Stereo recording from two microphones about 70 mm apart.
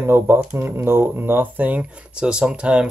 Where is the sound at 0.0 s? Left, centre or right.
Right.